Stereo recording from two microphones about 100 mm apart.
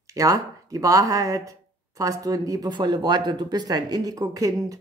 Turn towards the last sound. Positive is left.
turn(degrees=-35)  # may be behind; listen again after turning